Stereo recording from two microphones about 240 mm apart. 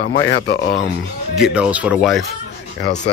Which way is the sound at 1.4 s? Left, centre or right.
Centre.